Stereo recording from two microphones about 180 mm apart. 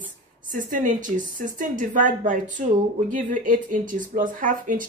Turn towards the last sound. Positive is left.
turn(degrees=-50)  # may be behind; listen again after turning